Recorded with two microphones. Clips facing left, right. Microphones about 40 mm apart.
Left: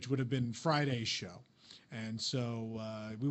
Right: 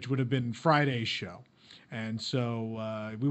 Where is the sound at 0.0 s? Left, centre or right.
Right.